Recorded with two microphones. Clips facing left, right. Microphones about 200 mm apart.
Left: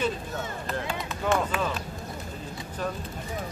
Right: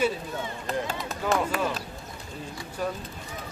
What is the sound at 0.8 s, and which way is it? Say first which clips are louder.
Run: even; 40° right (ahead or behind).